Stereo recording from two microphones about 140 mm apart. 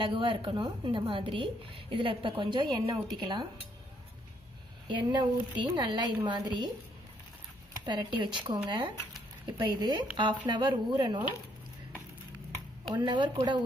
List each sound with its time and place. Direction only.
0.0 s a woman's voice: 35° right (ahead or behind)
4.8 s a woman's voice: 35° right (ahead or behind)
7.8 s a woman's voice: 30° right (ahead or behind)
12.9 s a woman's voice: 35° right (ahead or behind)